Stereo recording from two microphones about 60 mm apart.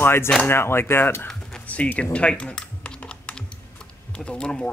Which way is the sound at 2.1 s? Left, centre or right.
Centre.